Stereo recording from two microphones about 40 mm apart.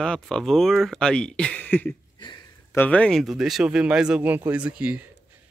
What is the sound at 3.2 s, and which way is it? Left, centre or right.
Speech, centre.